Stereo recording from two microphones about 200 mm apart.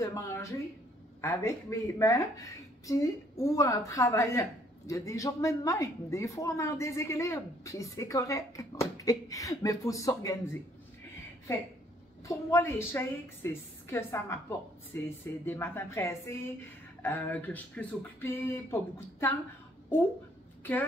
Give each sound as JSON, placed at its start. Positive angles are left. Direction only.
{"t": 0.0, "sound": "a woman's voice", "side_deg": 15}
{"t": 12.3, "sound": "a woman's voice", "side_deg": 15}